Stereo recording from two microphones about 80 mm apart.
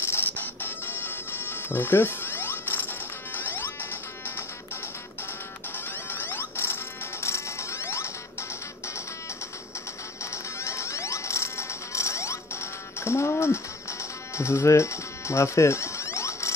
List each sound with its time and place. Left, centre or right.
0.0 s music: left
6.1 s music: left
10.3 s music: left